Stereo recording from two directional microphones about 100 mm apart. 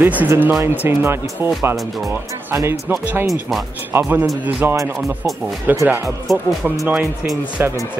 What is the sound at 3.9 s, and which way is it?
Speech, 25° right (ahead or behind).